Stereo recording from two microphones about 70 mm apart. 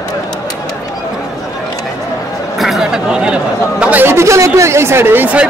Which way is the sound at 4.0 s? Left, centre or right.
Right.